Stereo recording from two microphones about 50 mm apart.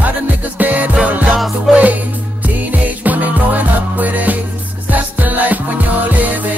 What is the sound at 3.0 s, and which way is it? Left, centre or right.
Music, right.